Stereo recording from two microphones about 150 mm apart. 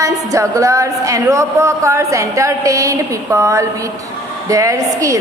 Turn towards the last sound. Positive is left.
turn(degrees=-20)  # may be behind; listen again after turning